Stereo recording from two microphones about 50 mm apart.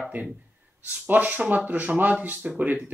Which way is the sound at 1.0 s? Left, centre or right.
Right.